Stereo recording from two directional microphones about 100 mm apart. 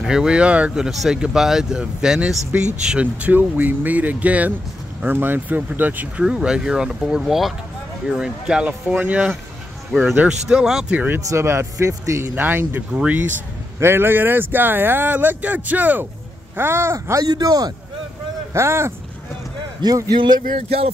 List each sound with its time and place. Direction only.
0.0 s speech: 5° right (ahead or behind)
10.5 s speech: 5° right (ahead or behind)
11.2 s speech: 25° right (ahead or behind)
17.2 s speech: 40° right (ahead or behind)
18.5 s speech: 25° right (ahead or behind)
19.8 s speech: 40° right (ahead or behind)